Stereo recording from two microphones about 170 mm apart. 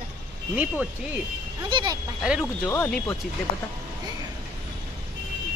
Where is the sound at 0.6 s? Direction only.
10° right (ahead or behind).